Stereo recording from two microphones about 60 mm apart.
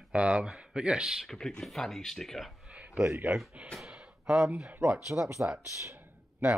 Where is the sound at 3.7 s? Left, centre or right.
Centre.